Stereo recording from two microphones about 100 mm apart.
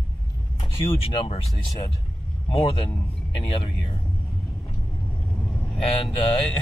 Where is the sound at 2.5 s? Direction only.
65° left (ahead or behind).